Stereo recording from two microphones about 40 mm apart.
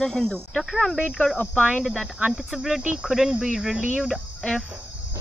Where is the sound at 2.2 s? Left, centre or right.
Right.